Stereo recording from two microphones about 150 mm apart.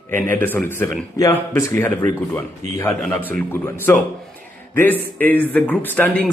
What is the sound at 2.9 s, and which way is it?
Speech, 5° left (ahead or behind).